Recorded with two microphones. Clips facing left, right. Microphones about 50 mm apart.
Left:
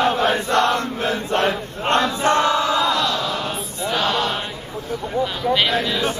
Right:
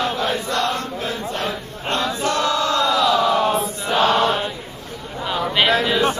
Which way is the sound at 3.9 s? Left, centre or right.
Right.